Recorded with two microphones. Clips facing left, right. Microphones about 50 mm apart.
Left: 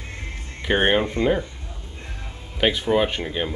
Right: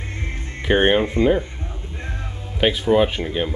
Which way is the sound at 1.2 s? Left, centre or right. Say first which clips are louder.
Right 4 dB; right.